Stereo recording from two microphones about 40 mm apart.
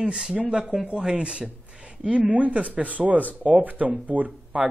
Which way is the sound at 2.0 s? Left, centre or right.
Right.